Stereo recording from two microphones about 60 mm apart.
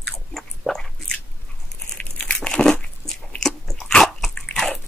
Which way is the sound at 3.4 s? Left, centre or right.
Centre.